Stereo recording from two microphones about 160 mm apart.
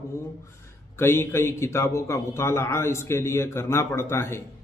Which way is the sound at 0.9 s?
15° left (ahead or behind).